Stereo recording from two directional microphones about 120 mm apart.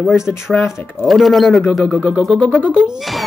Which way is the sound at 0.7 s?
20° left (ahead or behind).